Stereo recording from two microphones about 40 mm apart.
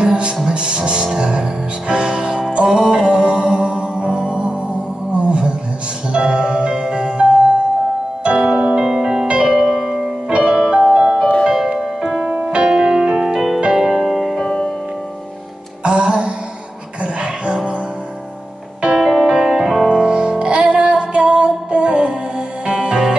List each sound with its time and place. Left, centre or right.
0.0 s music: right
5.1 s a sound: right
6.1 s music: right; by 10.1 s centre
10.2 s music: centre
15.8 s music: right
18.9 s music: centre